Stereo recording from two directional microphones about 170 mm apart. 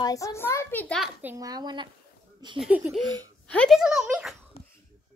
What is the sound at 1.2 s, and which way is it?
Speech, 15° right (ahead or behind).